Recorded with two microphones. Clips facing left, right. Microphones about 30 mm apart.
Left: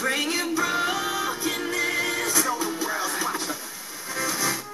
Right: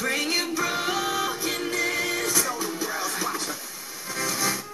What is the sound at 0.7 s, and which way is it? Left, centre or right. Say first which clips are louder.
Music: left 1 dB; centre.